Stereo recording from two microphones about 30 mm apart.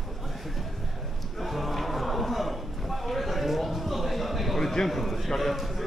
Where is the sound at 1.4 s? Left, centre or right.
Centre.